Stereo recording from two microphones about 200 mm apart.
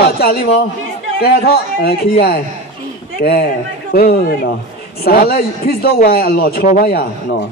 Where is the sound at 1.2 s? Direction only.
50° left (ahead or behind).